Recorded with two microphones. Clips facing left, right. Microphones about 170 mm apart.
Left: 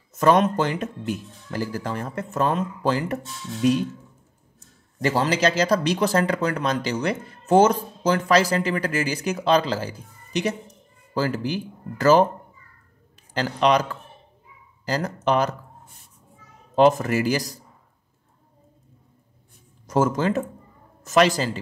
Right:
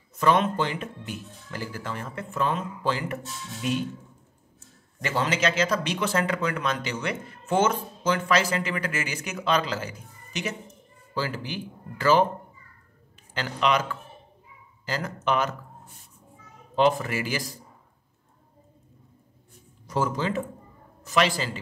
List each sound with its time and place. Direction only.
0.1 s speech: 45° left (ahead or behind)
4.6 s speech: 35° left (ahead or behind)
13.3 s speech: 35° left (ahead or behind)
16.7 s speech: 40° left (ahead or behind)
19.9 s a man's voice: 45° left (ahead or behind)